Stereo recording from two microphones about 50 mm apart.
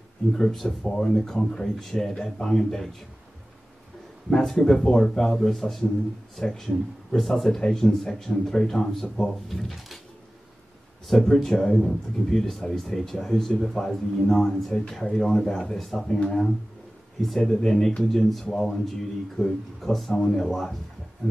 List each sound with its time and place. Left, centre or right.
0.3 s speech: centre
4.3 s speech: centre
11.1 s speech: centre
17.5 s speech: centre
20.1 s speech: centre
20.4 s speech: centre